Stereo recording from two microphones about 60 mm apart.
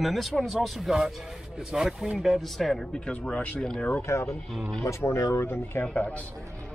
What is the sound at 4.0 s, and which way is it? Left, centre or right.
Speech, left.